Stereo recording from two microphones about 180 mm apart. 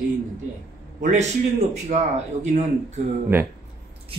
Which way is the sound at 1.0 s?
40° right (ahead or behind).